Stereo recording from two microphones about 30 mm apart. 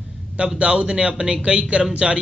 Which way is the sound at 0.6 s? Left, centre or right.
Right.